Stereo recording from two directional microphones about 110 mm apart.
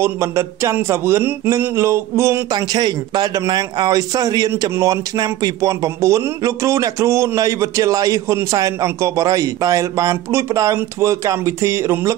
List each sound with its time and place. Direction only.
0.0 s a man's voice: 25° right (ahead or behind)
2.5 s a man's voice: 40° right (ahead or behind)